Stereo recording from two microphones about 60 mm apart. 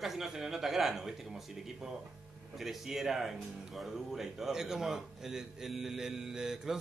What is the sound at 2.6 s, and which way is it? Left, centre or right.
Speech, centre.